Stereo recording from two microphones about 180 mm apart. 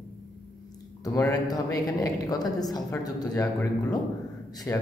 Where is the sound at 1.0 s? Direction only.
20° left (ahead or behind).